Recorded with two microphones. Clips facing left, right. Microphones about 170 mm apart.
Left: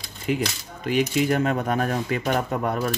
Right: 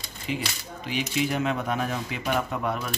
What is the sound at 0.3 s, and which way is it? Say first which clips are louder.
Speech: left 6 dB; 50° left (ahead or behind).